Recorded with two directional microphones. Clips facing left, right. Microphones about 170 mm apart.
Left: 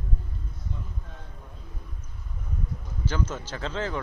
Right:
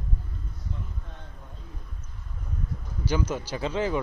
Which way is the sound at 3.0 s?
10° right (ahead or behind).